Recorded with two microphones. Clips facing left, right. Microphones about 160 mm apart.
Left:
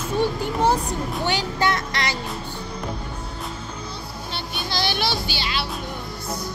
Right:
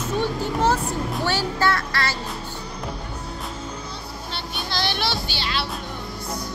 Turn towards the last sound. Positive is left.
turn(degrees=5)  # may be behind; listen again after turning